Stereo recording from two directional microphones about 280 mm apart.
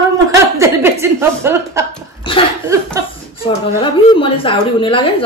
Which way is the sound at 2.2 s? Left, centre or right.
Centre.